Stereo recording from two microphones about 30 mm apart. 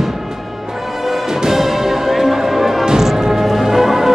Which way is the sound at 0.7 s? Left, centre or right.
Centre.